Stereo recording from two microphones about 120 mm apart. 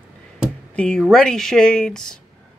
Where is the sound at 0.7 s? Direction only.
10° left (ahead or behind).